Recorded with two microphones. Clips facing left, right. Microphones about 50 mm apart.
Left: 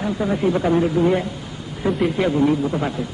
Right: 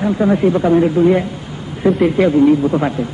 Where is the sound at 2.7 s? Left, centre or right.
Right.